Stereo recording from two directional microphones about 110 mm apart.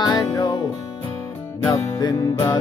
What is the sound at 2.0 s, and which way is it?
Music, 40° left (ahead or behind).